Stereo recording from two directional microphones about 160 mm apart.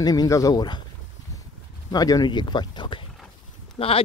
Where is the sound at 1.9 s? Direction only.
25° left (ahead or behind).